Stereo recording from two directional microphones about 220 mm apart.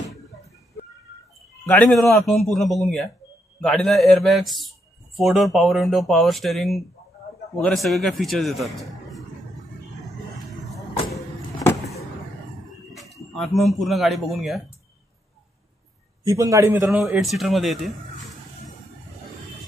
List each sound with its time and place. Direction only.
1.7 s a man's voice: 10° left (ahead or behind)
11.6 s vehicle: 15° left (ahead or behind)
12.9 s a sound: centre (ahead or behind)
13.3 s a man's voice: centre (ahead or behind)
16.3 s a man's voice: 15° right (ahead or behind)
17.0 s a man's voice: centre (ahead or behind)